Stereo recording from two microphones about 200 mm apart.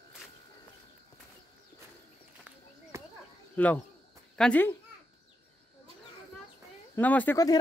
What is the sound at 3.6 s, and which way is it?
A woman's voice, 10° left (ahead or behind).